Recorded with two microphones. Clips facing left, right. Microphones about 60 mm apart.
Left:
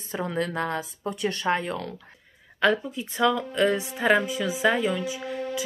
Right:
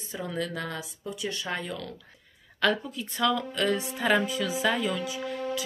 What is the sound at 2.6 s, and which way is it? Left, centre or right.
A woman's voice, left.